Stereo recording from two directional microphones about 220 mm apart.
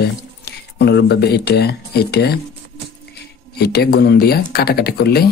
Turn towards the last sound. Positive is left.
turn(degrees=45)  # may be behind; listen again after turning